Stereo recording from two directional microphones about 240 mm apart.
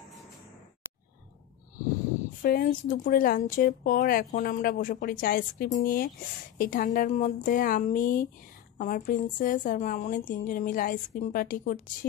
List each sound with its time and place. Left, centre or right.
2.4 s a woman's voice: left